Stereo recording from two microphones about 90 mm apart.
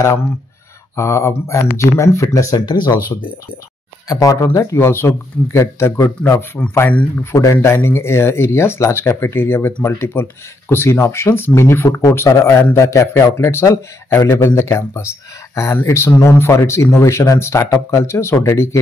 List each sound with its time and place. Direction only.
0.9 s speech: 35° left (ahead or behind); by 3.0 s 50° left (ahead or behind)
4.1 s speech: 40° left (ahead or behind)
4.5 s speech: 30° left (ahead or behind)